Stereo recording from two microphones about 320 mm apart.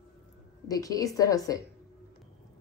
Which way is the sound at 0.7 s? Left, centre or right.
Centre.